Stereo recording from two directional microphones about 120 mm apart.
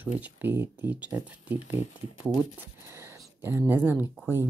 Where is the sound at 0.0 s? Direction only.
15° right (ahead or behind).